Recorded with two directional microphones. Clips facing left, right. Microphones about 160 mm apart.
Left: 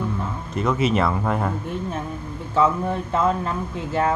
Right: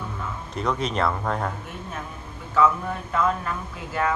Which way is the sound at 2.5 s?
25° left (ahead or behind).